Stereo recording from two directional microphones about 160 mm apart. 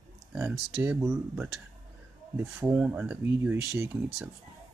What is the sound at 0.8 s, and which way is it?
Speech, 10° right (ahead or behind).